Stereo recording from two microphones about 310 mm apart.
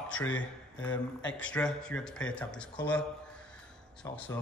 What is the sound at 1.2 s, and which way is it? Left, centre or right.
A man's voice, centre.